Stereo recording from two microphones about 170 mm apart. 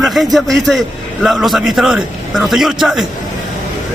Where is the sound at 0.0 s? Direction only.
Centre (ahead or behind).